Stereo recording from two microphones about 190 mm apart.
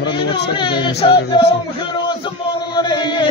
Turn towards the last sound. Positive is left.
turn(degrees=25)  # may be behind; listen again after turning